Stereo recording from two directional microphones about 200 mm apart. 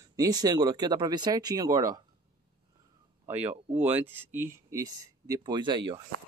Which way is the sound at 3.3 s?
10° right (ahead or behind).